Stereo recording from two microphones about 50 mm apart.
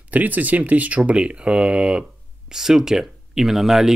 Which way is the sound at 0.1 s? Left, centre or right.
Right.